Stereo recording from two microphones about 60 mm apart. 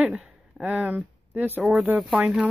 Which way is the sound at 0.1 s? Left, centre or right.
Centre.